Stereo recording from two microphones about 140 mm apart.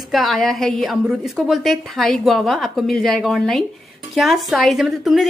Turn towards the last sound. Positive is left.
turn(degrees=0)  # may be behind; listen again after turning